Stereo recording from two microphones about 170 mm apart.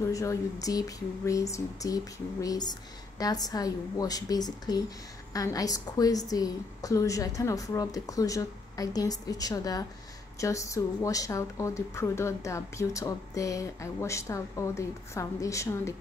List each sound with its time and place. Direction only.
0.0 s a woman's voice: 20° left (ahead or behind)